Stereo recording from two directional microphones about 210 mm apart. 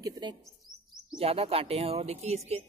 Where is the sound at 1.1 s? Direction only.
25° right (ahead or behind).